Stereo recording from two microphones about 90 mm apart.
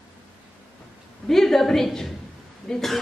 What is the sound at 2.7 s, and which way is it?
Throat clearing, 5° left (ahead or behind).